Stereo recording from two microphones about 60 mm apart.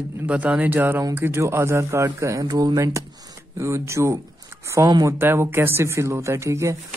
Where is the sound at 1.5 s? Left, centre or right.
Right.